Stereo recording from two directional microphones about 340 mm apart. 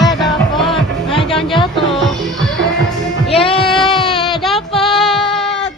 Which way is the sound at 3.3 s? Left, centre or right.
Centre.